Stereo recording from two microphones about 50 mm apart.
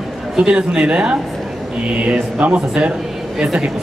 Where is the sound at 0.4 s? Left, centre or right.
Right.